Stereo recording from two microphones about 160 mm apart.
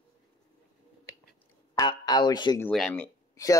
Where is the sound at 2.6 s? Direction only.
5° left (ahead or behind).